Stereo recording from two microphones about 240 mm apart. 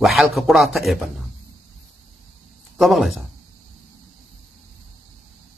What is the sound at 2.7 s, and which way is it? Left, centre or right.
Speech, centre.